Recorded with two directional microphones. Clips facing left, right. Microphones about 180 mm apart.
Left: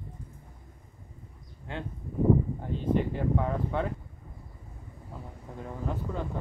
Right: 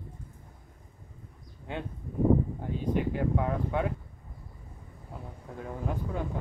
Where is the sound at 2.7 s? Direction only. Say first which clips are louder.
Left 2 dB; 10° right (ahead or behind).